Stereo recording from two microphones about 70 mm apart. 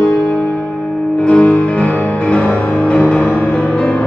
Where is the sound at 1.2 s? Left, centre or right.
Centre.